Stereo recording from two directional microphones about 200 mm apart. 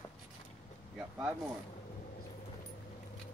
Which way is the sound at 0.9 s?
5° right (ahead or behind).